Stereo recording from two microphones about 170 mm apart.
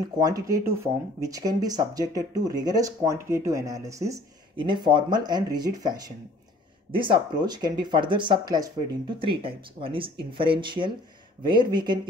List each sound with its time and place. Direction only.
0.2 s speech: 20° right (ahead or behind)